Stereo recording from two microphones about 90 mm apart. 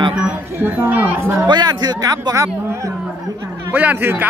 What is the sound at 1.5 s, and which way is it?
Speech, 50° right (ahead or behind).